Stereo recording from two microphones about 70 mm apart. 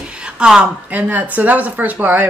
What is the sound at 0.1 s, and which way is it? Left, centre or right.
A woman's voice, centre.